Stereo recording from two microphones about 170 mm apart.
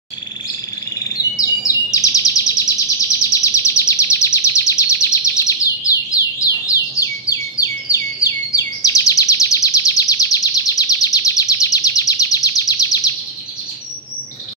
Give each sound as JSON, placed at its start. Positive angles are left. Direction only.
{"t": 1.3, "sound": "chirp", "side_deg": 20}